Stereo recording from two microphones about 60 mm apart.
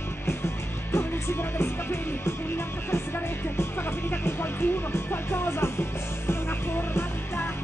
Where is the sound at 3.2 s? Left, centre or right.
Left.